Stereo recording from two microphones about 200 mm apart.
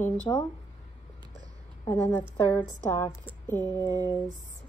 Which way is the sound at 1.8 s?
10° left (ahead or behind).